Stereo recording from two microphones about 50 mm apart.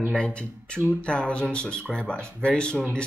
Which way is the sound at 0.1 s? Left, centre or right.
Left.